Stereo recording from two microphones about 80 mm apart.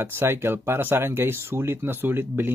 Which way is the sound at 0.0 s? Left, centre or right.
Right.